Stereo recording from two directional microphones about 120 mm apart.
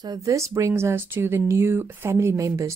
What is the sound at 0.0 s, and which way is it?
Speech, 30° right (ahead or behind).